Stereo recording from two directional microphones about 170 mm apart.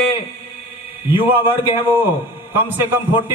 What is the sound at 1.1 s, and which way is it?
A man's voice, 10° right (ahead or behind).